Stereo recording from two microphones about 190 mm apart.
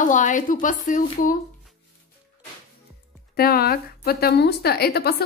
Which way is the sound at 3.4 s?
55° left (ahead or behind).